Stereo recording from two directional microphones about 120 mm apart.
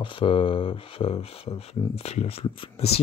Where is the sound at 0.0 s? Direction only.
45° left (ahead or behind).